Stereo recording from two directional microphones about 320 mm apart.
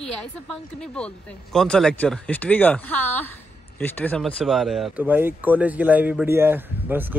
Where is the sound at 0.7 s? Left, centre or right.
Centre.